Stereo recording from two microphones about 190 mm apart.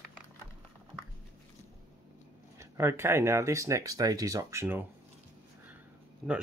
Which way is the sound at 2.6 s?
15° right (ahead or behind).